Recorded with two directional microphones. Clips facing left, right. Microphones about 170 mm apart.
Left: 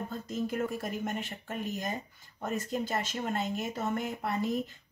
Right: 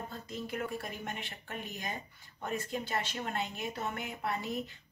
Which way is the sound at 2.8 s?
45° left (ahead or behind).